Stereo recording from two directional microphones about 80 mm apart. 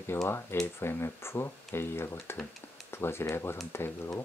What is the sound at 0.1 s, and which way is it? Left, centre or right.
Speech, left.